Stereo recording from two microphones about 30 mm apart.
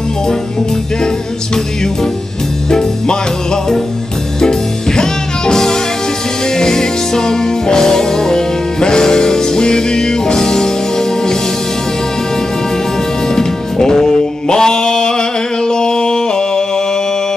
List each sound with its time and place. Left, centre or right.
4.4 s music: left
13.4 s music: centre